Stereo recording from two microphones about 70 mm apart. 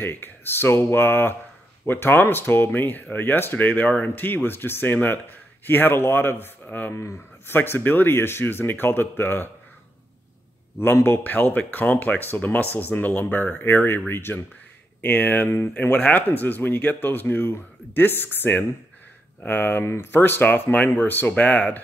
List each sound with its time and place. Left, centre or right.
0.0 s speech: left
10.8 s speech: left